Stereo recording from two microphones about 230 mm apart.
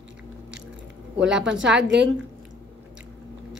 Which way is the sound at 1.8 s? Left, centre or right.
Right.